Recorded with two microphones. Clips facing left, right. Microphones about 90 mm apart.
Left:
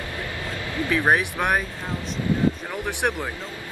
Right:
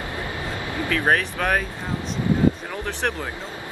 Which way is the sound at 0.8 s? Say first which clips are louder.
Left 1 dB; 15° left (ahead or behind).